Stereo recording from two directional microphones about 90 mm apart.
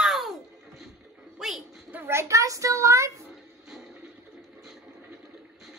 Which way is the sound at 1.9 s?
30° right (ahead or behind).